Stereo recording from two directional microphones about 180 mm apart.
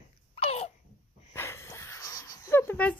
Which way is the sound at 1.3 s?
15° left (ahead or behind).